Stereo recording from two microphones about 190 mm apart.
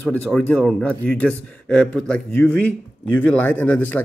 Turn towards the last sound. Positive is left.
turn(degrees=10)  # may be behind; listen again after turning